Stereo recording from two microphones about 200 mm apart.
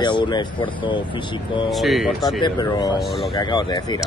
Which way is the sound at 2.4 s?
20° left (ahead or behind).